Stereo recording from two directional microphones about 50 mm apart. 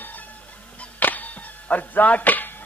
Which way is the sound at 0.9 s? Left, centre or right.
Left.